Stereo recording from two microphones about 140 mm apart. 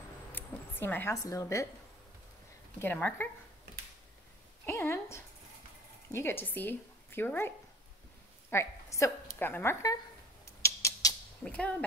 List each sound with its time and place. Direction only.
0.3 s speech: 15° left (ahead or behind)
2.8 s speech: 10° left (ahead or behind)
4.6 s a woman's voice: 15° left (ahead or behind)
10.6 s a sound: 25° left (ahead or behind)
11.4 s speech: 10° left (ahead or behind)